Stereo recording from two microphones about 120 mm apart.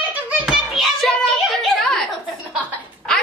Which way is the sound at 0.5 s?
Centre (ahead or behind).